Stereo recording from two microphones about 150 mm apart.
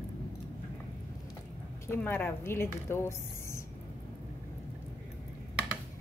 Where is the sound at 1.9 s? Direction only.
10° left (ahead or behind).